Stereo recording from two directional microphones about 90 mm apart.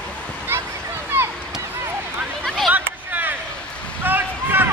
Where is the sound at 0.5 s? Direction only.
25° right (ahead or behind).